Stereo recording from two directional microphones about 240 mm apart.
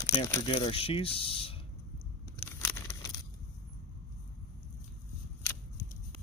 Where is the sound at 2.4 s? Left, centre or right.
Centre.